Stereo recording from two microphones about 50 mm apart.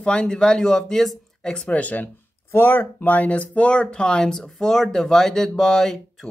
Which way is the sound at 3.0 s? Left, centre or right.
Left.